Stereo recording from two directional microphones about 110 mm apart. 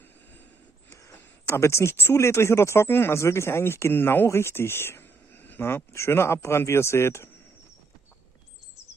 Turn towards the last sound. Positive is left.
turn(degrees=25)  # may be behind; listen again after turning